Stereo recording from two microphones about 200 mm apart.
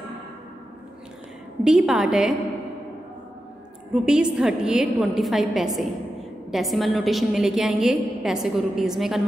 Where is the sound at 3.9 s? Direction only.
5° right (ahead or behind).